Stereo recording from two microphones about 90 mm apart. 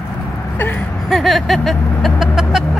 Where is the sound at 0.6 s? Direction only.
20° left (ahead or behind).